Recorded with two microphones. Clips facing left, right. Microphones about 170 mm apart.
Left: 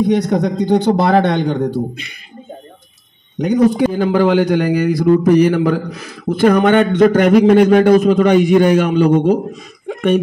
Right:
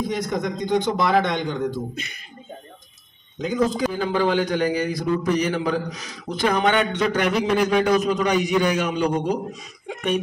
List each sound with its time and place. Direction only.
0.0 s speech: 65° left (ahead or behind)
3.3 s speech: 70° left (ahead or behind)
3.9 s a man's voice: 50° left (ahead or behind)
4.5 s a man's voice: 60° left (ahead or behind)